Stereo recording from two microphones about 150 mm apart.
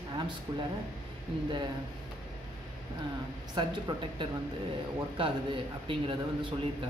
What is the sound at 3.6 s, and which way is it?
Speech, 30° right (ahead or behind).